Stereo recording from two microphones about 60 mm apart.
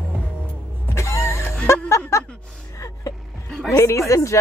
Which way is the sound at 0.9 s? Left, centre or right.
Left.